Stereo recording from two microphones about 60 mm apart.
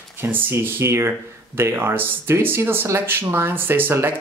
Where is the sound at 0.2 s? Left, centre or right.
Right.